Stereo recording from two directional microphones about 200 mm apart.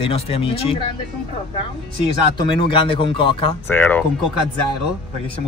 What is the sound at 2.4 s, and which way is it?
Speech, 25° left (ahead or behind).